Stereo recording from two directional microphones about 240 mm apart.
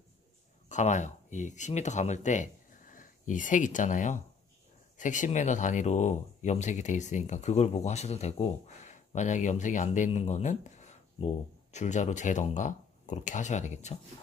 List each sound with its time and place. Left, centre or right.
0.7 s speech: left